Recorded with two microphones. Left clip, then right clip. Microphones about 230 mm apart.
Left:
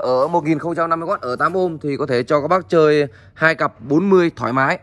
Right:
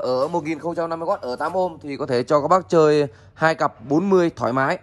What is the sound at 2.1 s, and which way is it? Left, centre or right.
Speech, centre.